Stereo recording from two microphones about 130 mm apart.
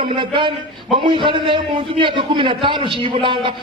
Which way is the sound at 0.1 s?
40° right (ahead or behind).